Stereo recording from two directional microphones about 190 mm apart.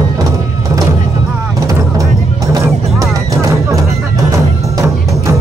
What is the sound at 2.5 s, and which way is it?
Music, 15° right (ahead or behind).